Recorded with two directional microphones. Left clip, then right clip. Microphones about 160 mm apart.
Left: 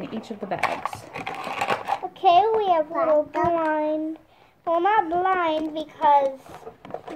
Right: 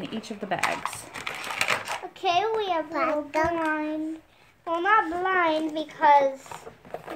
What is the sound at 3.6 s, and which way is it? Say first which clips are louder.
A child's voice: left 4 dB; 15° left (ahead or behind).